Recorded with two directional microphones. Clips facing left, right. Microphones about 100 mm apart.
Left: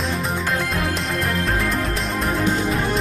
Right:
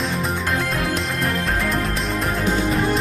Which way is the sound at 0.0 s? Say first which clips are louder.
Even; centre (ahead or behind).